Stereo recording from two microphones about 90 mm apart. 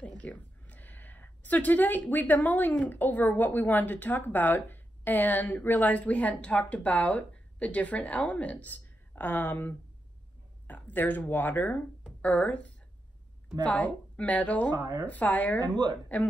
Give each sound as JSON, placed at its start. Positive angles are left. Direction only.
{"t": 0.0, "sound": "speech", "side_deg": 15}
{"t": 12.0, "sound": "a sound", "side_deg": 15}
{"t": 13.7, "sound": "speech", "side_deg": 15}
{"t": 14.8, "sound": "speech", "side_deg": -45}
{"t": 15.0, "sound": "speech", "side_deg": 15}
{"t": 15.6, "sound": "speech", "side_deg": -50}